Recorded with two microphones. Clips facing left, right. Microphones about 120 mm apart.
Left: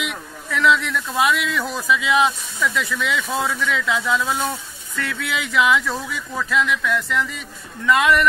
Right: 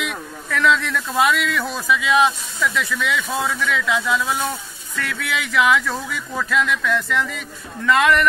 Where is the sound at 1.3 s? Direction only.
20° left (ahead or behind).